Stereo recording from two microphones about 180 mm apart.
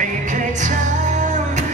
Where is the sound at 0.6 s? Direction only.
40° right (ahead or behind).